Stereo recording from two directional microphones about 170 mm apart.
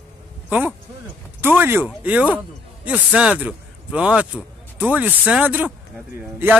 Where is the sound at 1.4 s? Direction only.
10° right (ahead or behind).